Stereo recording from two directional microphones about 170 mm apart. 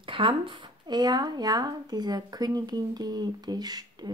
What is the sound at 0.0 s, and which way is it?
Speech, 30° right (ahead or behind).